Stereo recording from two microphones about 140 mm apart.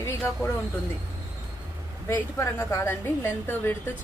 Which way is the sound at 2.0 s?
20° left (ahead or behind).